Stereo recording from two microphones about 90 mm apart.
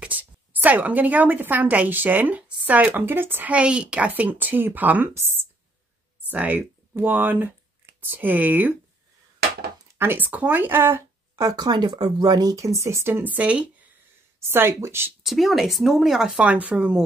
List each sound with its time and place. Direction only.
0.0 s a woman's voice: 20° right (ahead or behind)
9.9 s a woman's voice: 25° right (ahead or behind)
11.3 s speech: 45° right (ahead or behind); by 13.7 s 15° right (ahead or behind)
14.5 s a woman's voice: 25° right (ahead or behind)
15.2 s speech: centre (ahead or behind)
16.3 s speech: 15° right (ahead or behind)